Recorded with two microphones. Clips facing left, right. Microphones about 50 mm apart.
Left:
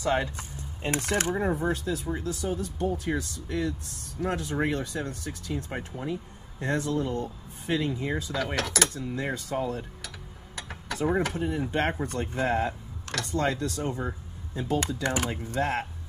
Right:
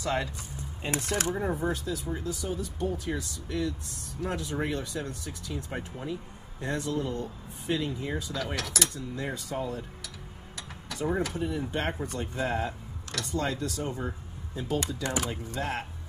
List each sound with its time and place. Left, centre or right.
0.0 s speech: left
1.3 s speech: centre
1.7 s speech: left
5.7 s speech: centre
6.6 s speech: left
8.2 s speech: left
9.7 s tick-tock: left
11.2 s speech: left
13.1 s speech: left
14.6 s speech: left